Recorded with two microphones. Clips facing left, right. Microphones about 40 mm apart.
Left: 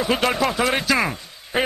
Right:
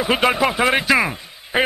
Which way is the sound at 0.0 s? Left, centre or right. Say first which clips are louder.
Right 3 dB; centre.